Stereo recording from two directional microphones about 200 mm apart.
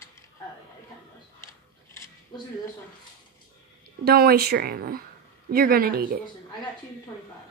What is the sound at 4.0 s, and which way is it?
Speech, 50° right (ahead or behind).